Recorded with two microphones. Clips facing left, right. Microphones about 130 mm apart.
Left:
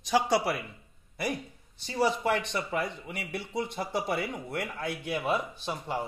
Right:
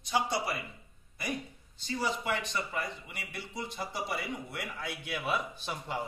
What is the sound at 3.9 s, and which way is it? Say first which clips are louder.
Speech: left 6 dB; 55° left (ahead or behind).